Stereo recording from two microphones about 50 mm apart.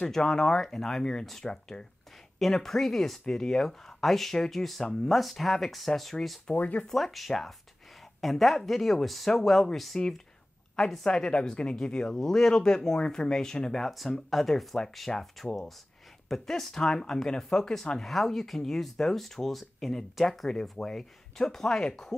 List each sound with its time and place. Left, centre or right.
0.0 s speech: centre
5.1 s speech: centre
6.5 s speech: left
6.9 s speech: centre
9.9 s speech: centre
11.1 s a woman's voice: left